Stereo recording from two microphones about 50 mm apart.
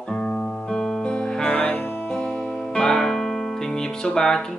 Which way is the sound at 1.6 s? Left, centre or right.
Left.